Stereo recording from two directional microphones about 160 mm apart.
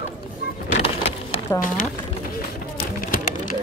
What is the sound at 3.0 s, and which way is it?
Pigeon, 60° left (ahead or behind).